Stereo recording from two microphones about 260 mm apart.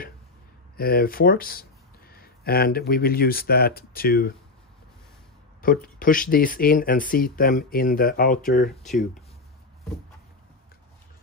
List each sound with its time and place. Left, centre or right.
0.7 s speech: left
5.6 s speech: left